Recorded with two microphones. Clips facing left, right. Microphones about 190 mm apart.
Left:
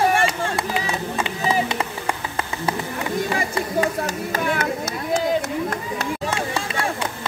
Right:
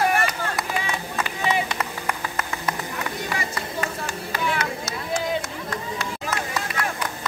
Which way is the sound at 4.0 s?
45° left (ahead or behind).